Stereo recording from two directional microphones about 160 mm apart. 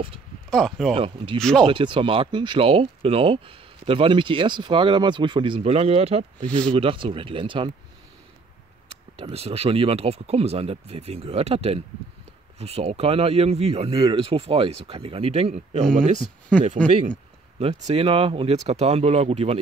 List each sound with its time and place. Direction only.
0.5 s speech: centre (ahead or behind)
0.9 s speech: 35° right (ahead or behind)
1.4 s speech: 5° left (ahead or behind)
1.7 s speech: 30° right (ahead or behind)
9.2 s speech: 40° right (ahead or behind)
13.9 s speech: 25° right (ahead or behind)
15.8 s speech: 5° left (ahead or behind)
17.6 s speech: 40° right (ahead or behind)